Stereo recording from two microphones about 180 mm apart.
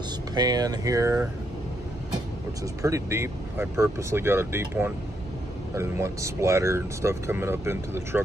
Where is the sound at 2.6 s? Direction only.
15° right (ahead or behind).